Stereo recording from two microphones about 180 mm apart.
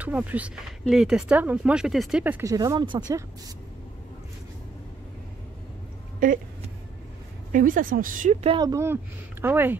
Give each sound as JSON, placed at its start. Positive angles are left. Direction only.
{"t": 0.0, "sound": "speech", "side_deg": -10}
{"t": 2.4, "sound": "speech", "side_deg": -20}
{"t": 6.1, "sound": "speech", "side_deg": -50}
{"t": 7.5, "sound": "speech", "side_deg": -50}
{"t": 8.5, "sound": "speech", "side_deg": -20}